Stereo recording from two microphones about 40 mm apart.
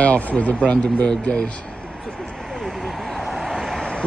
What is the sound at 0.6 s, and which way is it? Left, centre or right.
Speech, left.